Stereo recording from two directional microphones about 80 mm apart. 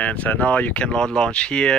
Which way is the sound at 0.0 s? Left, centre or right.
Centre.